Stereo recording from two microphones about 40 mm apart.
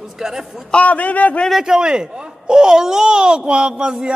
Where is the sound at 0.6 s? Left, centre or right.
Left.